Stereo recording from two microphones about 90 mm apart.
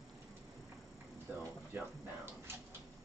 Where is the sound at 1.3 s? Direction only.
15° right (ahead or behind).